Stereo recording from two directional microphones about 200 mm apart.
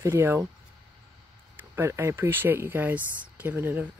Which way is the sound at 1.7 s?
15° right (ahead or behind).